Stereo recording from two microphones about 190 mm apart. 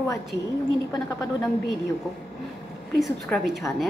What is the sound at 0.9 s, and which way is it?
Speech, 20° left (ahead or behind).